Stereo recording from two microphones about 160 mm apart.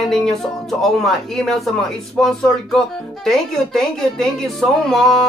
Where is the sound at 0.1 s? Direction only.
Centre (ahead or behind).